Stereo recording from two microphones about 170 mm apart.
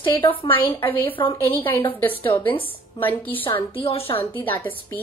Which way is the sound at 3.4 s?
30° left (ahead or behind).